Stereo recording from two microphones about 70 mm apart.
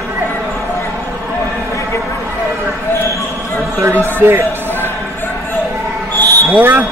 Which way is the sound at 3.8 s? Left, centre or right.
Right.